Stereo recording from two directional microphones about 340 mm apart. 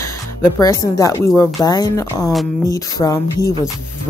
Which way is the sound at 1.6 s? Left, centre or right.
Centre.